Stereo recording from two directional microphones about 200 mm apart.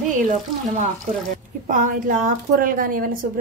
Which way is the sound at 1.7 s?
40° right (ahead or behind).